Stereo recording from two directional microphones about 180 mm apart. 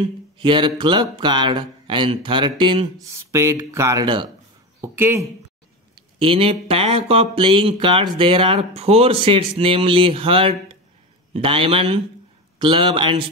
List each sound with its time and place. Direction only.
0.0 s speech: 25° right (ahead or behind)
3.1 s speech: 15° right (ahead or behind)
4.8 s speech: 15° right (ahead or behind)
5.9 s speech: 30° right (ahead or behind)